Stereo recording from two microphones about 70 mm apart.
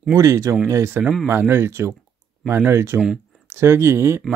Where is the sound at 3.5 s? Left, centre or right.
Right.